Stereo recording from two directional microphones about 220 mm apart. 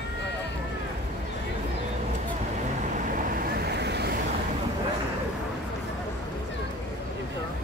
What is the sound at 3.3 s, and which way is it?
Vehicle, 50° right (ahead or behind).